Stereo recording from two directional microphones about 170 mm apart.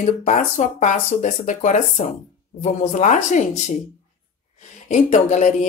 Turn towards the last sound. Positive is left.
turn(degrees=45)  # may be behind; listen again after turning